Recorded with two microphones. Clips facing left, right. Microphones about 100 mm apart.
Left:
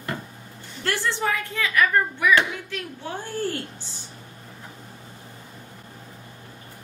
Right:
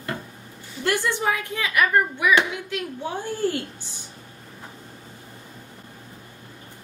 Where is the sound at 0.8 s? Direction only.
15° right (ahead or behind).